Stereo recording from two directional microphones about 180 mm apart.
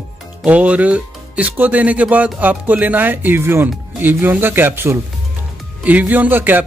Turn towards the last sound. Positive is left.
turn(degrees=-10)  # may be behind; listen again after turning